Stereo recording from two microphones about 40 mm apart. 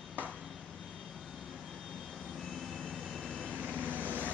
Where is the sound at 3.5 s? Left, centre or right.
Right.